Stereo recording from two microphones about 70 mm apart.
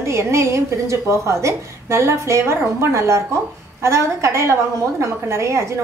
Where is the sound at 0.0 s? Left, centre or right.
Right.